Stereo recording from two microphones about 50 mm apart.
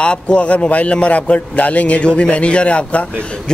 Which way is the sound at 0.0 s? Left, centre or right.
Left.